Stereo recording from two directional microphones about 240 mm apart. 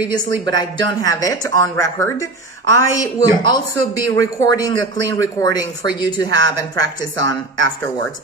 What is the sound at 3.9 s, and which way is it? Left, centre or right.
A woman's voice, centre.